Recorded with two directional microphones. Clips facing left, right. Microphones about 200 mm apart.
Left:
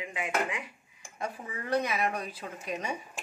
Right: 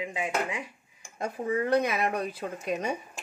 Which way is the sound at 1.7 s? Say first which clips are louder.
Right 2 dB; 60° right (ahead or behind).